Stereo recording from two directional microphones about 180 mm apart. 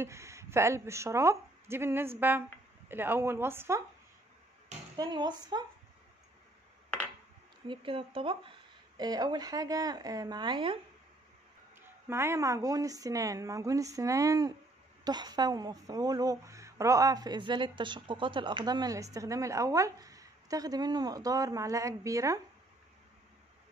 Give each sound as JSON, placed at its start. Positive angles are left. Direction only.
{"t": 0.0, "sound": "a woman's voice", "side_deg": -15}
{"t": 4.9, "sound": "a woman's voice", "side_deg": -25}
{"t": 7.6, "sound": "a woman's voice", "side_deg": -30}
{"t": 12.1, "sound": "a woman's voice", "side_deg": -15}